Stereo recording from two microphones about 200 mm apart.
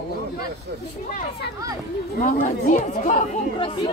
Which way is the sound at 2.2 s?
40° left (ahead or behind).